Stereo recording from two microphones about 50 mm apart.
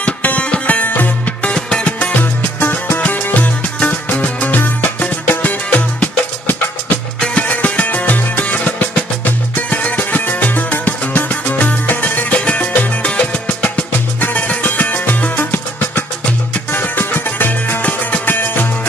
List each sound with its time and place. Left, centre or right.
0.0 s music: left
1.5 s music: left
17.8 s music: left
18.3 s music: left